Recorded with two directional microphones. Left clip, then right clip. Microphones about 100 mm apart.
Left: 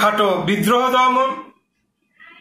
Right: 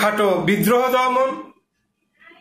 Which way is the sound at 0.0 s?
30° right (ahead or behind).